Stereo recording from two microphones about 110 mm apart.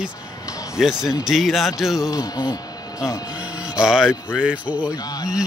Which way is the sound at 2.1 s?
25° left (ahead or behind).